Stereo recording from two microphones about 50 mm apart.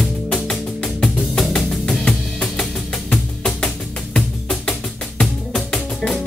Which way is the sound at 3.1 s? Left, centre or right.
Centre.